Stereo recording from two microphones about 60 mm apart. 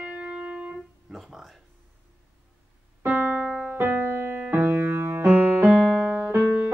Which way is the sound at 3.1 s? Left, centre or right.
Right.